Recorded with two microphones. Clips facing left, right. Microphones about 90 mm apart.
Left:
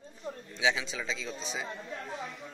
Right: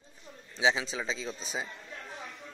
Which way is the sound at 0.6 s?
30° right (ahead or behind).